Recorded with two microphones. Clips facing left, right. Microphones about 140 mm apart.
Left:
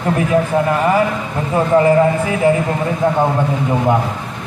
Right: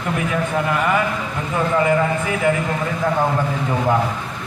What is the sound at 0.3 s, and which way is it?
A man's voice, 30° left (ahead or behind).